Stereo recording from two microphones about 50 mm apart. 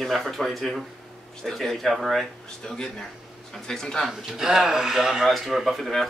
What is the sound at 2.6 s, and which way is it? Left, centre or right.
Speech, centre.